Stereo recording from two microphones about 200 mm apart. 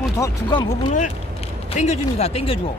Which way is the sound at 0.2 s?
20° left (ahead or behind).